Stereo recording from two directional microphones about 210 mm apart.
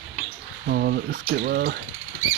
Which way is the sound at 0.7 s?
50° right (ahead or behind).